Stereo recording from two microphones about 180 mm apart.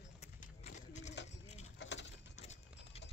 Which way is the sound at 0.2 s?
45° left (ahead or behind).